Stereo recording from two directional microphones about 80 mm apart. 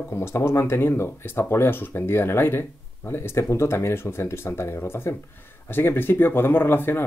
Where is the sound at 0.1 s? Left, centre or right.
Left.